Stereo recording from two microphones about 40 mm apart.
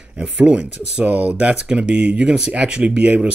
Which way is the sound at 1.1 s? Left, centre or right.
Right.